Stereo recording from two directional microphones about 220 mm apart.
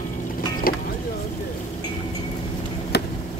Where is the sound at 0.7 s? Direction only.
40° left (ahead or behind).